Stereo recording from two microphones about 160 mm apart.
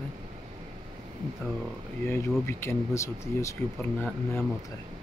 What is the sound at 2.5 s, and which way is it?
Speech, 15° left (ahead or behind).